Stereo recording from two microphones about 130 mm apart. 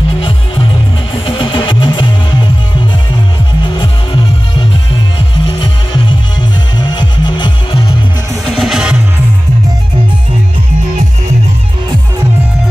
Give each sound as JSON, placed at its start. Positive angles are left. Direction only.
{"t": 1.1, "sound": "music", "side_deg": 40}
{"t": 3.6, "sound": "music", "side_deg": 35}
{"t": 8.5, "sound": "music", "side_deg": -5}